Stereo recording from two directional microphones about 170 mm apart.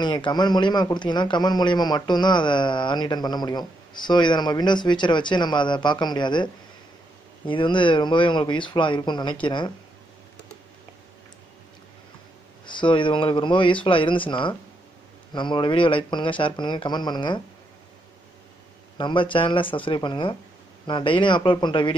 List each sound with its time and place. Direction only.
0.0 s a man's voice: 25° left (ahead or behind)
12.6 s a man's voice: 30° left (ahead or behind)
18.9 s a man's voice: 30° left (ahead or behind)